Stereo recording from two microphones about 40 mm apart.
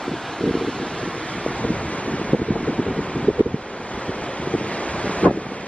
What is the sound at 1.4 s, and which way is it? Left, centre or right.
Wind, left.